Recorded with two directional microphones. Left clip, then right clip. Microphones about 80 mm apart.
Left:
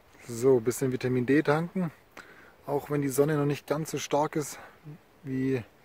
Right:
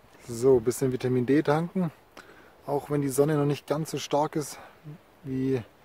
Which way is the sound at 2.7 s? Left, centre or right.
Right.